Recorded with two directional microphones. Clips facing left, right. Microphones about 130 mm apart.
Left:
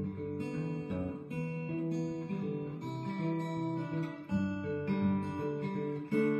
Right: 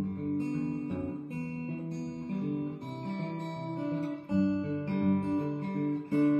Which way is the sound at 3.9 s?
40° right (ahead or behind).